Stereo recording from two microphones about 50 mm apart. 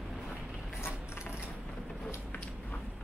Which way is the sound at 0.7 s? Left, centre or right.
Left.